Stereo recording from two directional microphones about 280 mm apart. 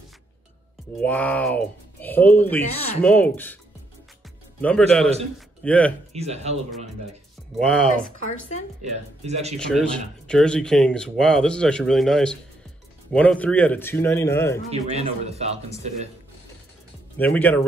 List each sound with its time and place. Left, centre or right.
1.0 s speech: centre
4.6 s speech: centre
6.1 s speech: right
7.5 s speech: centre
9.2 s speech: right
9.6 s speech: centre
14.7 s speech: right
17.2 s speech: centre